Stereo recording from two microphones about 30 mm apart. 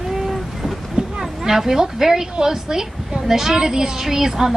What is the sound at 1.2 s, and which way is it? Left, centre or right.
A woman's voice, centre.